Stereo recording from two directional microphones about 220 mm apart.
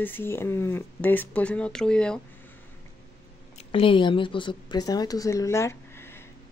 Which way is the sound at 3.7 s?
25° left (ahead or behind).